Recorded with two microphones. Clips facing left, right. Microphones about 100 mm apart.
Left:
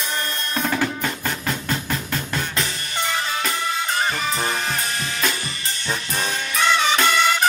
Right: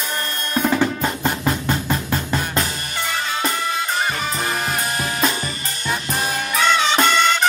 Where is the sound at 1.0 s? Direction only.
35° right (ahead or behind).